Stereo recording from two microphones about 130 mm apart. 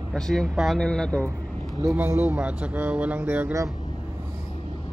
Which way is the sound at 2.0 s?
15° right (ahead or behind).